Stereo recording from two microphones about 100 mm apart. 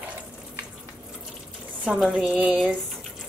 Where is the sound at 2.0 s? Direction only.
5° right (ahead or behind).